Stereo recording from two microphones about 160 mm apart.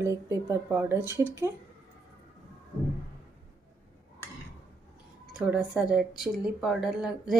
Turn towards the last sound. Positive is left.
turn(degrees=-5)  # may be behind; listen again after turning